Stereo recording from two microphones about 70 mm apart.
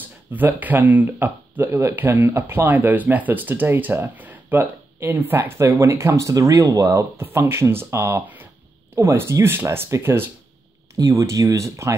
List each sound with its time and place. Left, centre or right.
0.0 s speech: right
5.0 s speech: right
7.2 s speech: right
11.0 s speech: right